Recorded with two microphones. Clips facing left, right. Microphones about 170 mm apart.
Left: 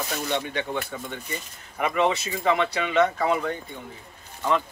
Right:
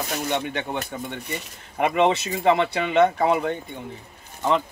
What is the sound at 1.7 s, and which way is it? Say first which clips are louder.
Speech: right 3 dB; 30° right (ahead or behind).